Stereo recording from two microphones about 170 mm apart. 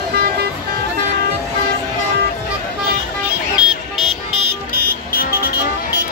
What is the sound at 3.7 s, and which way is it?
Vehicle, centre (ahead or behind).